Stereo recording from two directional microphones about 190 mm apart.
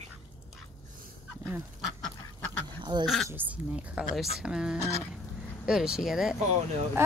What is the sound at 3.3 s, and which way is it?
Speech, 10° right (ahead or behind).